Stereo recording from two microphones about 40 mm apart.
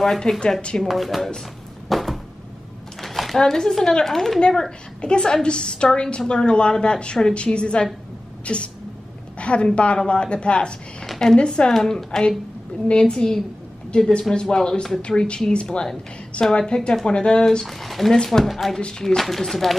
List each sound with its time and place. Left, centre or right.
0.3 s a woman's voice: centre
0.8 s speech: centre
1.9 s a sound: centre
3.3 s a woman's voice: centre
11.1 s a sound: centre
11.3 s a woman's voice: left
11.7 s a woman's voice: centre
15.0 s a woman's voice: left
17.6 s speech: centre
18.1 s speech: centre
18.4 s speech: centre
18.8 s a woman's voice: left
19.0 s speech: centre